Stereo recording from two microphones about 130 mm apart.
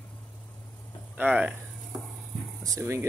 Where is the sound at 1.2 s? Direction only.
10° right (ahead or behind).